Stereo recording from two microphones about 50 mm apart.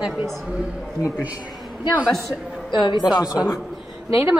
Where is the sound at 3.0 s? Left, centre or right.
Centre.